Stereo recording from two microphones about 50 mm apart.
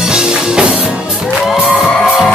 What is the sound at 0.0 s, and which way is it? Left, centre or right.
Music, centre.